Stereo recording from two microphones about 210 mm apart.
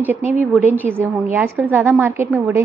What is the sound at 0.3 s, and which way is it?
A woman's voice, 10° right (ahead or behind).